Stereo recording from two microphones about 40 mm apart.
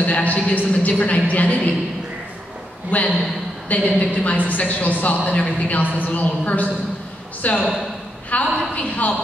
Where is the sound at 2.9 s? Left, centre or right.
Left.